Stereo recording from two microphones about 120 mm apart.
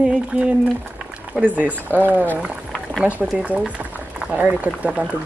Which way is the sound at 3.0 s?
15° right (ahead or behind).